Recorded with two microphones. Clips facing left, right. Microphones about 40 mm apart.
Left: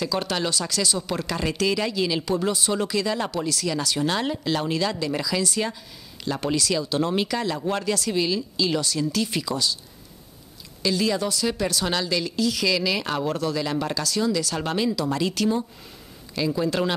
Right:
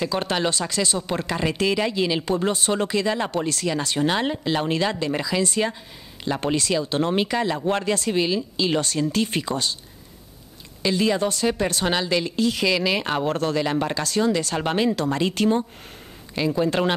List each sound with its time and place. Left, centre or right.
0.0 s speech: right
2.2 s speech: right
4.1 s speech: right
10.8 s speech: right
11.2 s speech: right
12.6 s speech: right